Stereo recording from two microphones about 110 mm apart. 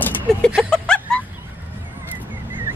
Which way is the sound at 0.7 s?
5° left (ahead or behind).